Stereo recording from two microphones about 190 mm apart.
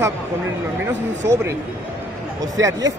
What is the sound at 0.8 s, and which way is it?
A woman's voice, 15° right (ahead or behind).